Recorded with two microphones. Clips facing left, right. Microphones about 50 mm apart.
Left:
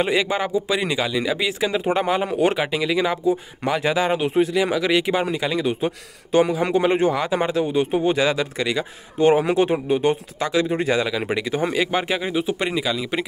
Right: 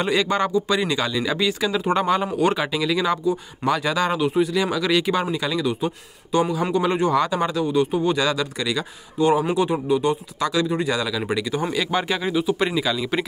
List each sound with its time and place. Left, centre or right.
0.0 s a man's voice: centre
2.3 s speech: left
4.3 s speech: left
4.6 s speech: left
5.9 s speech: left
6.7 s speech: left
7.1 s speech: left
7.5 s speech: left
9.2 s speech: left
10.4 s a man's voice: left
12.6 s a man's voice: centre